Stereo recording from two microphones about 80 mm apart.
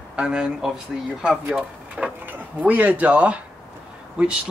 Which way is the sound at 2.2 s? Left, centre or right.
Right.